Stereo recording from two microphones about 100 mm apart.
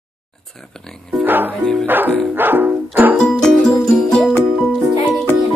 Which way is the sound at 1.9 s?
20° right (ahead or behind).